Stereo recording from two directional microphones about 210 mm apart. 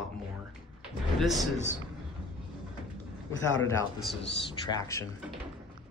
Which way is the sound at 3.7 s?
55° left (ahead or behind).